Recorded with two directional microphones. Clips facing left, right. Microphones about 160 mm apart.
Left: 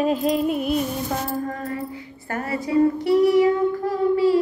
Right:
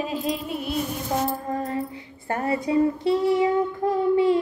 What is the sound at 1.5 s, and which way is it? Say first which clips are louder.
Child singing: right 2 dB; 25° right (ahead or behind).